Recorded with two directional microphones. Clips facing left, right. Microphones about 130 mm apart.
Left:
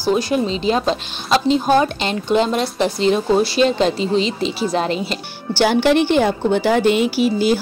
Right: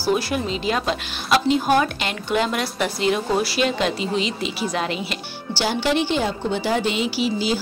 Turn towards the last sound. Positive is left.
turn(degrees=50)  # may be behind; listen again after turning